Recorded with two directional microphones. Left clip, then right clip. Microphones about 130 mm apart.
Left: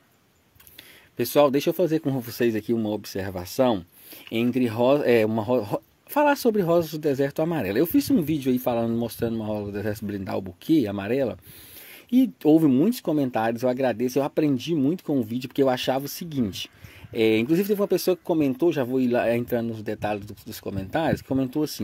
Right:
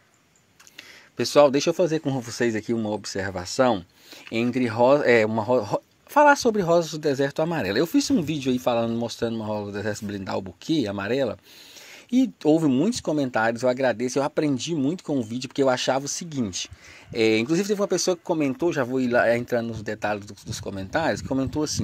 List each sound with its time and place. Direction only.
1.1 s speech: 25° left (ahead or behind); by 21.7 s 50° left (ahead or behind)